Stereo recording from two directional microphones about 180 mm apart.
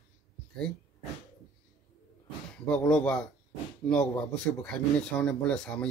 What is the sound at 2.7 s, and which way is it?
A man's voice, 5° left (ahead or behind).